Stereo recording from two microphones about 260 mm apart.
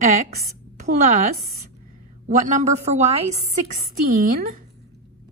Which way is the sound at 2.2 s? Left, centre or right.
Right.